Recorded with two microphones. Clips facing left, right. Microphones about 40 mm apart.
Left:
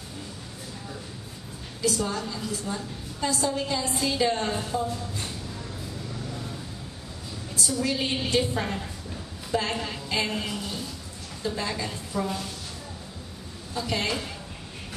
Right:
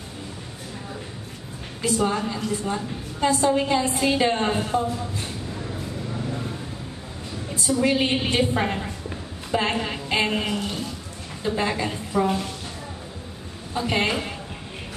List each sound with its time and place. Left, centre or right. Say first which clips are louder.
1.8 s a woman's voice: right 5 dB; right
4.8 s speech: right 4 dB; centre
5.5 s vehicle: right 5 dB; right
7.8 s a woman's voice: right 7 dB; right
13.7 s a woman's voice: right 5 dB; right